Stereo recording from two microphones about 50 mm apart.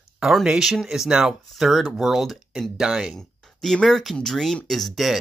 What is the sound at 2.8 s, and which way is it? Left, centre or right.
Speech, centre.